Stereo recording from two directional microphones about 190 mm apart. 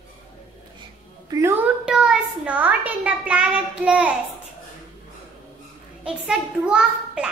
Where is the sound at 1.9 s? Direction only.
5° right (ahead or behind).